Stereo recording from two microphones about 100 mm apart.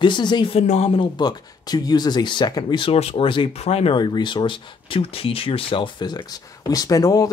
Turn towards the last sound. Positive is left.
turn(degrees=40)  # may be behind; listen again after turning